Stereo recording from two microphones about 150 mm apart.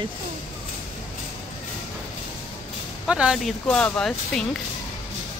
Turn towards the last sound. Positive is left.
turn(degrees=5)  # may be behind; listen again after turning